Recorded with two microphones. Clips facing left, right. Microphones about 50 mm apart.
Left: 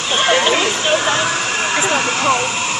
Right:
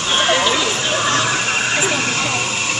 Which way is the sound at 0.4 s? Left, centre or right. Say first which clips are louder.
Left 2 dB; left.